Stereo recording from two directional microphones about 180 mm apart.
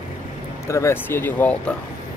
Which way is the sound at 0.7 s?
15° left (ahead or behind).